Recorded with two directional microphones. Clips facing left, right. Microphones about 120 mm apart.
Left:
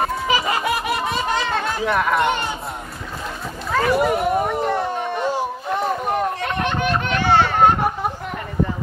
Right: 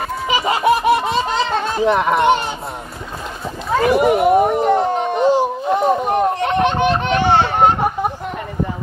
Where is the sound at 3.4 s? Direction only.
25° right (ahead or behind).